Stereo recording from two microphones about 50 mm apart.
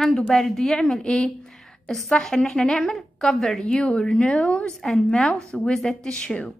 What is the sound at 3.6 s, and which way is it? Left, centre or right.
A woman's voice, left.